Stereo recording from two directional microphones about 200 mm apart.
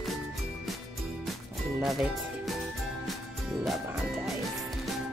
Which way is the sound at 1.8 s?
Centre (ahead or behind).